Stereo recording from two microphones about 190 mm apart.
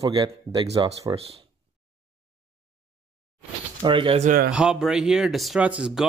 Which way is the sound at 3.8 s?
25° right (ahead or behind).